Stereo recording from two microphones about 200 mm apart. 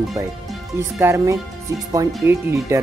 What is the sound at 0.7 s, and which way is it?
Speech, 15° right (ahead or behind).